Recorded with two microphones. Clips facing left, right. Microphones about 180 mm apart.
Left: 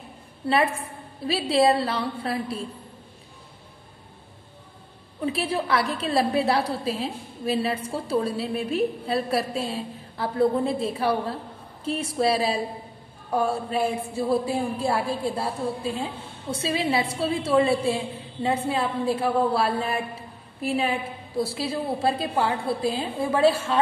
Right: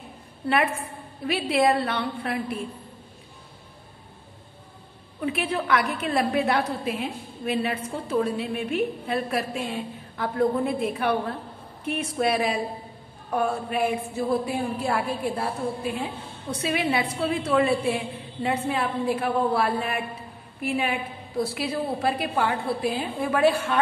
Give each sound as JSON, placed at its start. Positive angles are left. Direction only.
{"t": 1.2, "sound": "a woman's voice", "side_deg": 30}
{"t": 5.2, "sound": "a woman's voice", "side_deg": 30}